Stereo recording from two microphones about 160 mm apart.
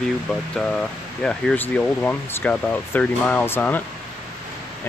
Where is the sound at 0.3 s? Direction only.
5° left (ahead or behind).